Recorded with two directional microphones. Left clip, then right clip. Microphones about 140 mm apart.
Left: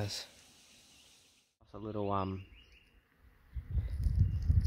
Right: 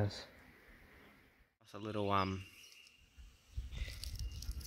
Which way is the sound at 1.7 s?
20° right (ahead or behind).